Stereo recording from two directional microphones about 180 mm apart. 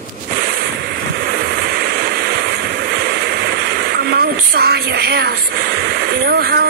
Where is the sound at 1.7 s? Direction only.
60° right (ahead or behind).